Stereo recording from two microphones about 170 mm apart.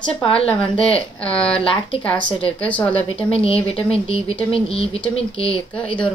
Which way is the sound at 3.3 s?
35° left (ahead or behind).